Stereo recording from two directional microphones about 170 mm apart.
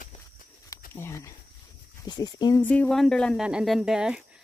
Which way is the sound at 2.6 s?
10° left (ahead or behind).